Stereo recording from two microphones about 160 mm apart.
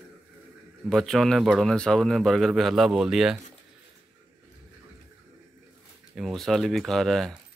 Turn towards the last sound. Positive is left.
turn(degrees=0)  # may be behind; listen again after turning